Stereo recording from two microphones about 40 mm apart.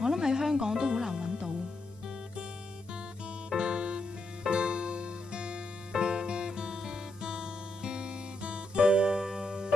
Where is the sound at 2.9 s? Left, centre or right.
Right.